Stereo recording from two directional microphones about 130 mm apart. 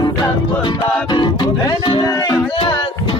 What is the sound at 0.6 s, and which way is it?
Music, 35° left (ahead or behind).